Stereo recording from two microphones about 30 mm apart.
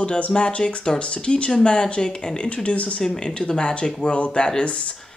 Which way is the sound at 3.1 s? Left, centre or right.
Left.